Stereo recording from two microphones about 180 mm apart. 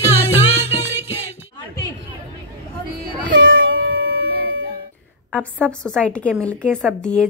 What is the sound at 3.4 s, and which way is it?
Music, 90° right.